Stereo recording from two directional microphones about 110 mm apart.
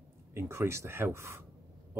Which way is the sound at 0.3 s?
25° right (ahead or behind).